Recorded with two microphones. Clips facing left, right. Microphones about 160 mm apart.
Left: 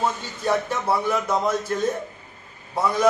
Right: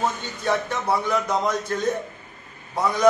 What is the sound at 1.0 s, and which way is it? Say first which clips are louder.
Speech: even; 5° left (ahead or behind).